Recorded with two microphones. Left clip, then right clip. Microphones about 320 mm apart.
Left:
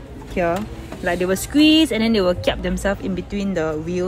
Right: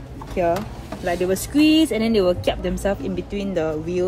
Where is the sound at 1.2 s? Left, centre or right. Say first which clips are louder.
Left 2 dB; centre.